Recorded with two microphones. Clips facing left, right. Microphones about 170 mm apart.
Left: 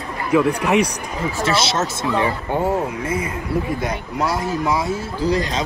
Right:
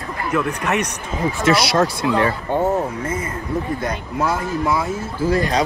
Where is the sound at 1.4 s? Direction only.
25° left (ahead or behind).